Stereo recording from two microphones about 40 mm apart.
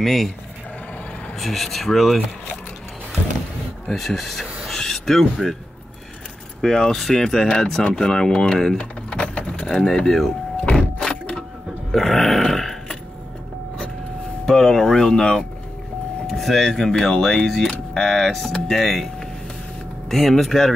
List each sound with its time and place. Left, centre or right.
0.0 s speech: centre
1.4 s speech: centre
3.9 s speech: centre
4.6 s a sound: centre
6.6 s speech: centre
9.2 s speech: left; by 10.3 s centre
10.6 s a sound: left; by 12.7 s centre
14.4 s music: centre
16.3 s speech: centre
20.1 s speech: centre